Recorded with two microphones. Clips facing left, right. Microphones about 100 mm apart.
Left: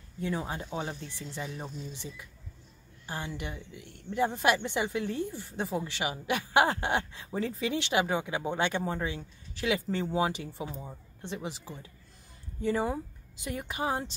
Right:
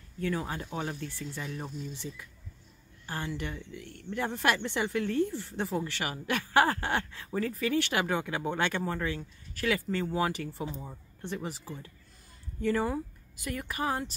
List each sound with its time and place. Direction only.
0.2 s speech: 20° left (ahead or behind)
10.7 s speech: centre (ahead or behind)
11.2 s speech: 20° left (ahead or behind)